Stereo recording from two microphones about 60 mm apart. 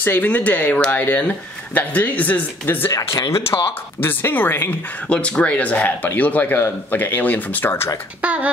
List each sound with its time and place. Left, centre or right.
0.0 s speech: left
3.1 s speech: left
4.0 s speech: left
5.1 s speech: centre; by 7.9 s left
8.2 s speech: right